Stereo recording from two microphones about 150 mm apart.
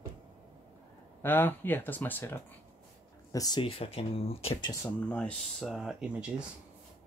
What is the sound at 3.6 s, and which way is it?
Speech, 40° left (ahead or behind).